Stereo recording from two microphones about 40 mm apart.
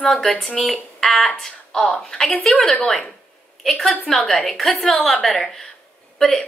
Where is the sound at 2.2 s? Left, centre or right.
Centre.